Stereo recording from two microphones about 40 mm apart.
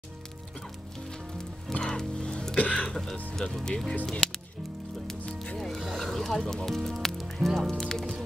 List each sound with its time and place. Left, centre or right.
1.4 s music: centre
3.3 s speech: centre
5.6 s music: centre
7.3 s speech: centre